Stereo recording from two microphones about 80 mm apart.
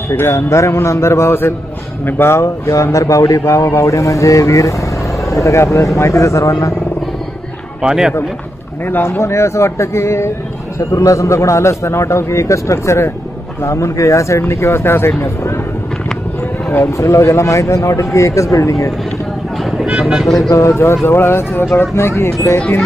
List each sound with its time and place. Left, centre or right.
0.1 s speech: left
7.8 s speech: centre
8.8 s speech: left
16.7 s speech: left
19.9 s speech: centre
20.4 s speech: left